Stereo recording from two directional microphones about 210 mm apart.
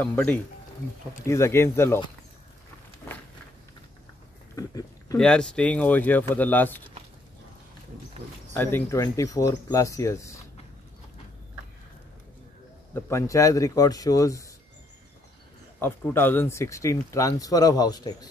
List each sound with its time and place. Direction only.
0.0 s speech: 10° left (ahead or behind)
4.6 s a sound: 15° left (ahead or behind)
5.1 s speech: 5° left (ahead or behind)
8.5 s speech: 10° left (ahead or behind)
12.9 s speech: 15° left (ahead or behind)
15.8 s speech: 10° left (ahead or behind)